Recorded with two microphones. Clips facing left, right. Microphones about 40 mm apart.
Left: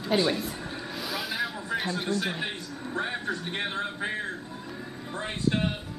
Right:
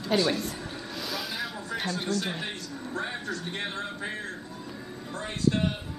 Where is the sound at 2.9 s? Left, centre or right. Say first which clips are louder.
Left 3 dB; left.